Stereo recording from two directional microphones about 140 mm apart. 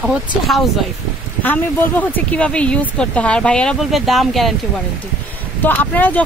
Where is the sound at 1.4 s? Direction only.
10° left (ahead or behind).